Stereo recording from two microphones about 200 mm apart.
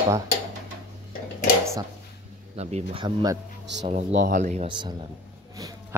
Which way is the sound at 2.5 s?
30° right (ahead or behind).